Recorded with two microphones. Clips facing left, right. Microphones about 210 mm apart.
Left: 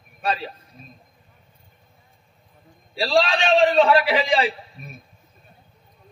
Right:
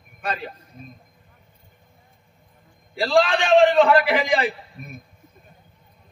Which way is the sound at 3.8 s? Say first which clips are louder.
Even; 50° right (ahead or behind).